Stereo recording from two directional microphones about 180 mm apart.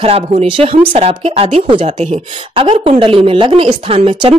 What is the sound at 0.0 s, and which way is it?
A woman's voice, 35° right (ahead or behind).